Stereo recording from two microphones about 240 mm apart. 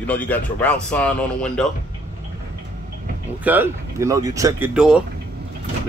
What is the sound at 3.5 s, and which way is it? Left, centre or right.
Speech, centre.